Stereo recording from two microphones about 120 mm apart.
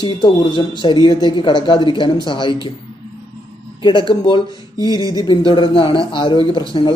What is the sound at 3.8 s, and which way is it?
Speech, 40° left (ahead or behind).